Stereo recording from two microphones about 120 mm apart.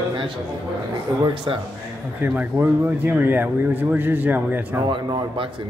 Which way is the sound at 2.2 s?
15° right (ahead or behind).